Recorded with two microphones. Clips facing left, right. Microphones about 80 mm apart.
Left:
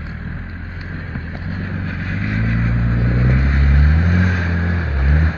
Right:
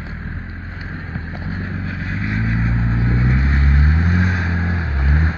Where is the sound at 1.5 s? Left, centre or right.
Centre.